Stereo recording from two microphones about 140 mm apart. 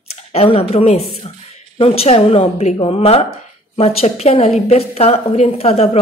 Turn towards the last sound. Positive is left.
turn(degrees=45)  # may be behind; listen again after turning